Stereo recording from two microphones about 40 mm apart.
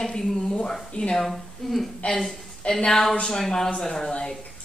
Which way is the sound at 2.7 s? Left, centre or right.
Centre.